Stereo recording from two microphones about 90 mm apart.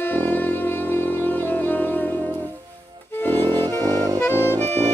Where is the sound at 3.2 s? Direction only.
25° left (ahead or behind).